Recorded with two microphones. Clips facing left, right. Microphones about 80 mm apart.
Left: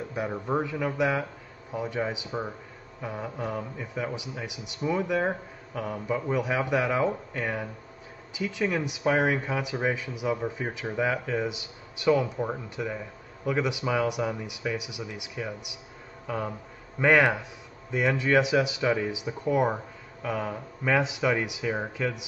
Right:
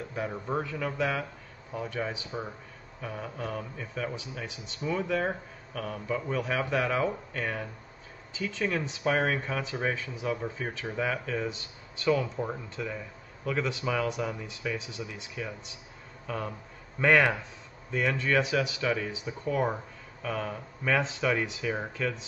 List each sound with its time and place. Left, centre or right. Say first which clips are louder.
0.1 s speech: left 3 dB; centre